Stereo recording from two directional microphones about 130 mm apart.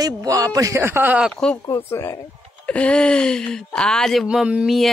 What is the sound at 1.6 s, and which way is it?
Speech, 20° left (ahead or behind).